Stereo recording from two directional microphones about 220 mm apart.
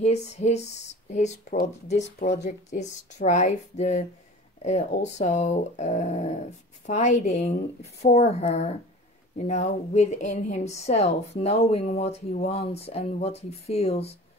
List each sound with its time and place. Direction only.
0.0 s a woman's voice: 30° left (ahead or behind)